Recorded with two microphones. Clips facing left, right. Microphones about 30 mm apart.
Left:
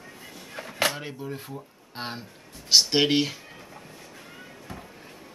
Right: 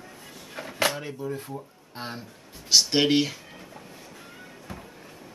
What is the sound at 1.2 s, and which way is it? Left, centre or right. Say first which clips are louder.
Speech: right 3 dB; left.